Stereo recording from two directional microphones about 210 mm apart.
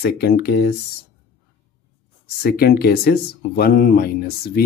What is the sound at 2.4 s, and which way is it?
Speech, 45° left (ahead or behind).